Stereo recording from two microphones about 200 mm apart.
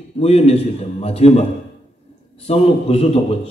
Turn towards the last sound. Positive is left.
turn(degrees=30)  # may be behind; listen again after turning